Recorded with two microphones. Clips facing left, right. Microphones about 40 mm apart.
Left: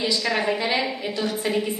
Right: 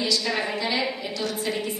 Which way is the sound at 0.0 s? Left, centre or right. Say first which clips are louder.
Left 2 dB; left.